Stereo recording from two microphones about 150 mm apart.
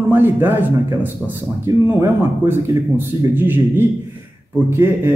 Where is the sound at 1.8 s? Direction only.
15° right (ahead or behind).